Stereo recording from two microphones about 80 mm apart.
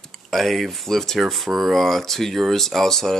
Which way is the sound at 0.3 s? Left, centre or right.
Centre.